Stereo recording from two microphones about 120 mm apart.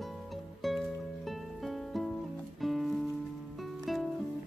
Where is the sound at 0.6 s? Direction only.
Centre (ahead or behind).